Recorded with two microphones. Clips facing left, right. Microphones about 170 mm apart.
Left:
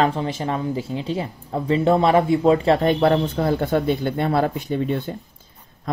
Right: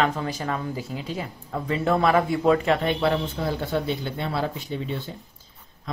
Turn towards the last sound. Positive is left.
turn(degrees=55)  # may be behind; listen again after turning